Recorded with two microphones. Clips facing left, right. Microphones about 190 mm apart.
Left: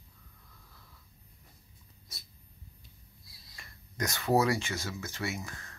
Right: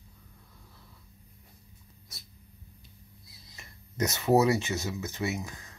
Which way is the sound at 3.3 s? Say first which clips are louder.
Right 1 dB; 20° right (ahead or behind).